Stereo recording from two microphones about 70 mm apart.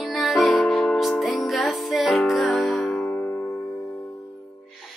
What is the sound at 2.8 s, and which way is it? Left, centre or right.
Music, left.